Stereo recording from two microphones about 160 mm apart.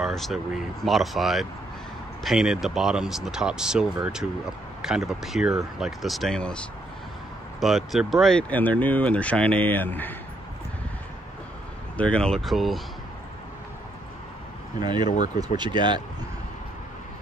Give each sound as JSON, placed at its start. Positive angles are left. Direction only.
{"t": 0.0, "sound": "speech", "side_deg": 0}
{"t": 12.0, "sound": "speech", "side_deg": 5}
{"t": 14.8, "sound": "speech", "side_deg": -25}